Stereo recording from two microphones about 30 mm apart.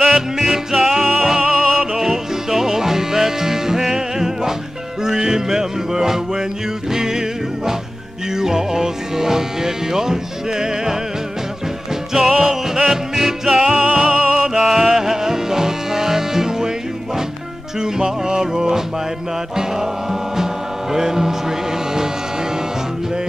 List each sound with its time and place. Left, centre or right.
0.4 s music: centre
12.1 s music: centre
17.7 s music: right
20.9 s speech: centre